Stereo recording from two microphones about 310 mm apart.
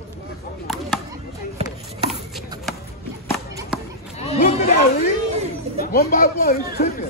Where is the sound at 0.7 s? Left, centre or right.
Centre.